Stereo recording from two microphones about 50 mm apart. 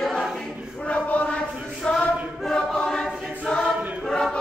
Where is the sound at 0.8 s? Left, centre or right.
Left.